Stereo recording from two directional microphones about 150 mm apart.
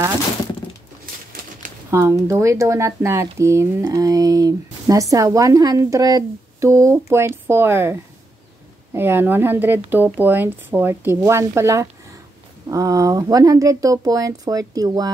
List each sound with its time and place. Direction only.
1.9 s speech: 15° right (ahead or behind)